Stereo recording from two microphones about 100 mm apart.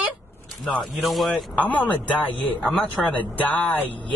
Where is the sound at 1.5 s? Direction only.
15° left (ahead or behind).